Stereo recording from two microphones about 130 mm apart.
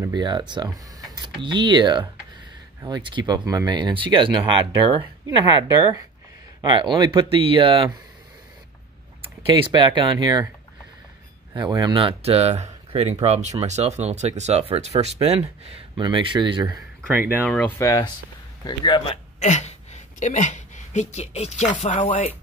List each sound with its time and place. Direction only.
0.0 s speech: 35° right (ahead or behind)
6.6 s speech: 35° right (ahead or behind)
9.6 s speech: 35° right (ahead or behind)
11.5 s speech: 35° right (ahead or behind); by 15.8 s 50° right (ahead or behind)
16.0 s speech: 40° right (ahead or behind)
17.1 s speech: 15° right (ahead or behind)
17.5 s speech: 5° left (ahead or behind)
17.7 s speech: 25° left (ahead or behind)
18.6 s a man's voice: 35° left (ahead or behind)
19.4 s a woman's voice: 60° left (ahead or behind)
22.0 s speech: 40° left (ahead or behind)